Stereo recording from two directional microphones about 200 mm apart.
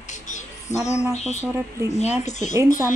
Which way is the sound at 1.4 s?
10° right (ahead or behind).